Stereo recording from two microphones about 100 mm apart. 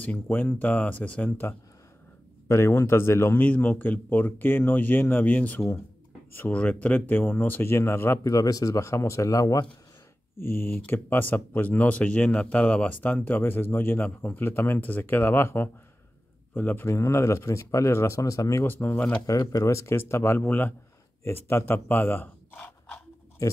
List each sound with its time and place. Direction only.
0.0 s speech: 20° left (ahead or behind)
2.4 s a man's voice: 25° left (ahead or behind)
10.3 s a man's voice: 25° left (ahead or behind)
19.4 s a man's voice: 35° left (ahead or behind); by 22.9 s 15° left (ahead or behind)